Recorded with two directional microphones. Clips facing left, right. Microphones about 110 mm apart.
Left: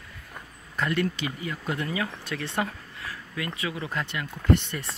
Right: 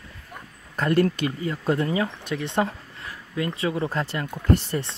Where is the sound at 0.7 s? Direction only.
40° right (ahead or behind).